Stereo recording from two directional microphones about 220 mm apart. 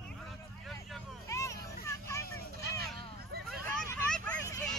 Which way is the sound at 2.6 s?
45° right (ahead or behind).